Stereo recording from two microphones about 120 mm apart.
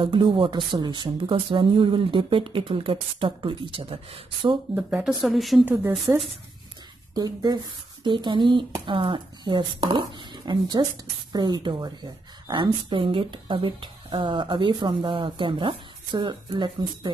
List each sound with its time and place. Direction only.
0.0 s speech: 45° right (ahead or behind)
5.2 s a woman's voice: centre (ahead or behind)
6.1 s speech: 20° right (ahead or behind)
7.2 s speech: 35° right (ahead or behind)